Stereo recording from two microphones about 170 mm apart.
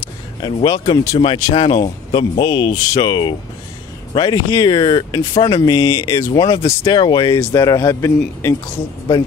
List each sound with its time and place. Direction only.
0.4 s speech: 25° left (ahead or behind)